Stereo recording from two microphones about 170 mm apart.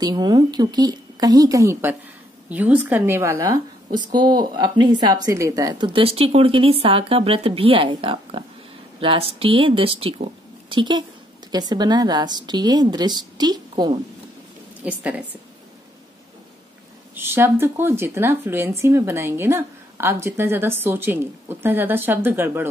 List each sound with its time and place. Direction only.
0.0 s a woman's voice: 25° right (ahead or behind)
14.8 s speech: 10° right (ahead or behind)
17.1 s speech: 15° right (ahead or behind)